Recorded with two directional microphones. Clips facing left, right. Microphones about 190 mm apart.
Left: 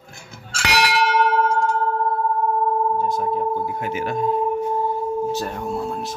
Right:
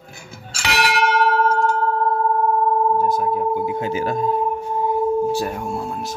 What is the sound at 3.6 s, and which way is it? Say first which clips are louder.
Speech: right 3 dB; 25° right (ahead or behind).